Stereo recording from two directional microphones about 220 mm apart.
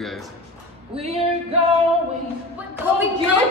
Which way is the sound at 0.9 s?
25° right (ahead or behind).